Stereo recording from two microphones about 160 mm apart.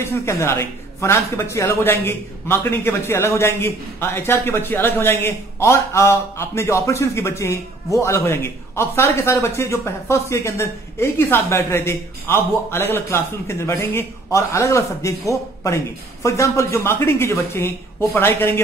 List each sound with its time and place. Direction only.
0.0 s speech: 15° left (ahead or behind)